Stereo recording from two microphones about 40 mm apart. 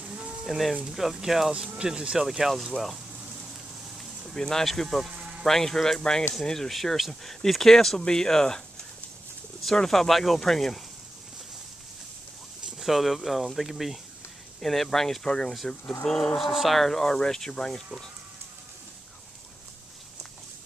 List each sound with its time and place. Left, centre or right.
0.0 s a sound: right
0.5 s speech: centre
1.8 s speech: right
2.2 s speech: centre
4.0 s a sound: centre
4.4 s speech: centre
4.8 s speech: centre
5.1 s a sound: right
5.4 s speech: centre
12.7 s speech: centre